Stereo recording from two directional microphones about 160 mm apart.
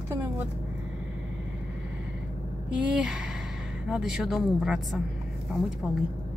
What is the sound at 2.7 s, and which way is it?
Speech, 5° right (ahead or behind).